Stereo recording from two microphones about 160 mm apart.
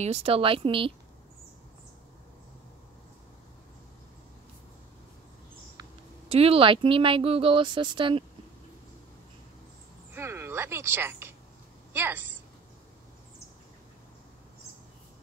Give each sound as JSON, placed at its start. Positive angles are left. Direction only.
{"t": 0.0, "sound": "speech", "side_deg": -40}
{"t": 6.2, "sound": "speech", "side_deg": -40}
{"t": 10.1, "sound": "a woman's voice", "side_deg": -15}